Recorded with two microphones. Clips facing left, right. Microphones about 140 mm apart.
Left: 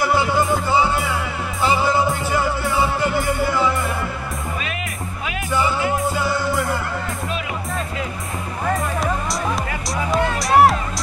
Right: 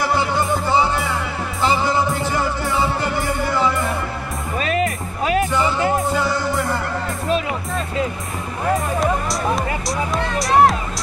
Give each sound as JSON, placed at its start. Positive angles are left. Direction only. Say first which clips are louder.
{"t": 4.6, "sound": "music", "louder": "right 8 dB", "side_deg": -40}
{"t": 10.1, "sound": "music", "louder": "left 1 dB", "side_deg": 0}